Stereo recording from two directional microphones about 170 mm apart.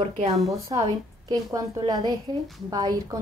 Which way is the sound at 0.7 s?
20° right (ahead or behind).